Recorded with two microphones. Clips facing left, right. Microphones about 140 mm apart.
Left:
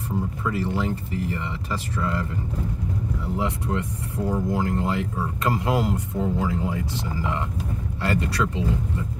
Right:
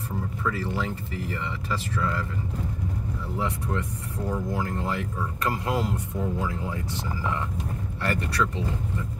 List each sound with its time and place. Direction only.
0.5 s a man's voice: 20° left (ahead or behind)
3.3 s a man's voice: 20° left (ahead or behind)